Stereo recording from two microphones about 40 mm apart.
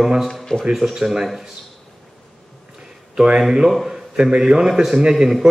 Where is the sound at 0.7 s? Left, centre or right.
Centre.